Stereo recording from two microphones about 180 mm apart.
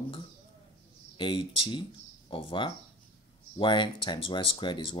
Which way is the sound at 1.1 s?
25° left (ahead or behind).